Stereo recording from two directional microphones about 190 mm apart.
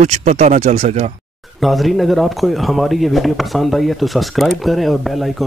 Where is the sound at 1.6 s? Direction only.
Centre (ahead or behind).